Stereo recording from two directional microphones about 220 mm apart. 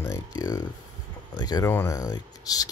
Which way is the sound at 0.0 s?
15° left (ahead or behind).